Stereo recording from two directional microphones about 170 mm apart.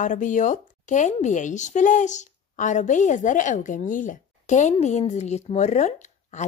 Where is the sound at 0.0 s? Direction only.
50° left (ahead or behind).